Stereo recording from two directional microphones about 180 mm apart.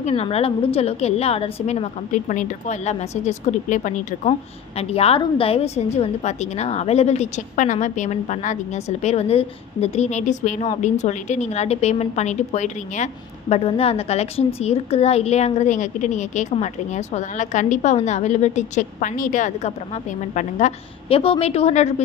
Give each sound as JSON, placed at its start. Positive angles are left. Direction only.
{"t": 0.0, "sound": "a woman's voice", "side_deg": 35}
{"t": 2.1, "sound": "a woman's voice", "side_deg": 45}